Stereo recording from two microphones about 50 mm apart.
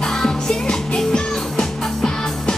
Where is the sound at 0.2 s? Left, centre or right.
Centre.